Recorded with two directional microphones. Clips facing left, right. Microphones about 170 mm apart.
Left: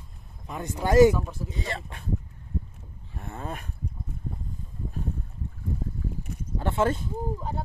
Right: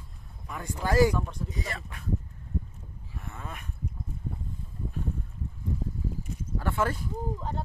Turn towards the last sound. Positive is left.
turn(degrees=25)  # may be behind; listen again after turning